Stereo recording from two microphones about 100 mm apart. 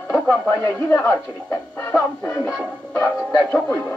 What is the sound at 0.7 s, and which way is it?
Speech, 25° left (ahead or behind).